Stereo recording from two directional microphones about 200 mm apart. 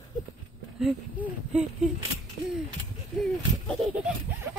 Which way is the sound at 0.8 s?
Centre (ahead or behind).